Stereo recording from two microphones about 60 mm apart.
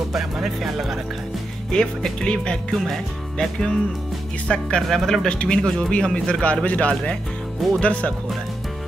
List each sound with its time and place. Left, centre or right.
0.1 s speech: centre
1.7 s speech: centre
4.8 s speech: centre
5.3 s speech: centre